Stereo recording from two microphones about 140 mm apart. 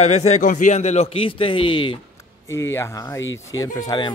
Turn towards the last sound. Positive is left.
turn(degrees=30)  # may be behind; listen again after turning